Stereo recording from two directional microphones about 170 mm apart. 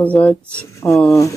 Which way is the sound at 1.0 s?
20° left (ahead or behind).